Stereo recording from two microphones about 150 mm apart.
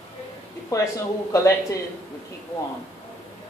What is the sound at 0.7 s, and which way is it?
A man's voice, 20° left (ahead or behind).